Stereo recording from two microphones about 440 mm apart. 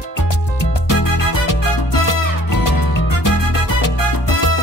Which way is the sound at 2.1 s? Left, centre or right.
Left.